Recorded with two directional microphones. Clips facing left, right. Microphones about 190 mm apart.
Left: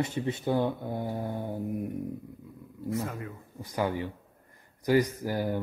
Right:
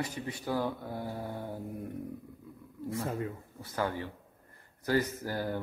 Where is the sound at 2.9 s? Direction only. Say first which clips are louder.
Even; 30° right (ahead or behind).